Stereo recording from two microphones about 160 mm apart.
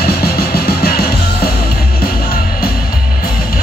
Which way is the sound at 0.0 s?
70° left (ahead or behind).